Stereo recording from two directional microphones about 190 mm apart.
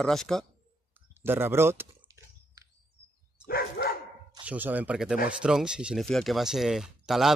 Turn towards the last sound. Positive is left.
turn(degrees=0)  # may be behind; listen again after turning